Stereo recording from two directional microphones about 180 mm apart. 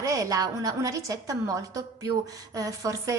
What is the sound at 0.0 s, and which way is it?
A woman's voice, 20° right (ahead or behind).